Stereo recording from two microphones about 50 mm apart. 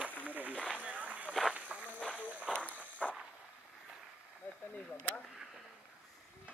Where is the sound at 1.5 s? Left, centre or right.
Right.